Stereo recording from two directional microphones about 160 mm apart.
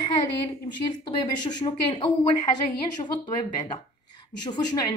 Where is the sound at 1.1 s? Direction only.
30° left (ahead or behind).